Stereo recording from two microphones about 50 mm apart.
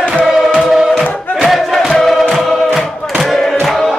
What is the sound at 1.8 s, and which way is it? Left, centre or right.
Music, centre.